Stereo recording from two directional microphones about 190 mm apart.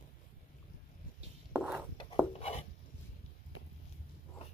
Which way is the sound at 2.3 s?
30° left (ahead or behind).